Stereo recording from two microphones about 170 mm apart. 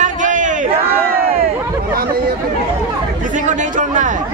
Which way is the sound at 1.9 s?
60° right (ahead or behind).